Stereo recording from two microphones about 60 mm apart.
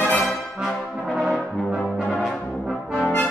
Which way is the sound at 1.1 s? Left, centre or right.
Centre.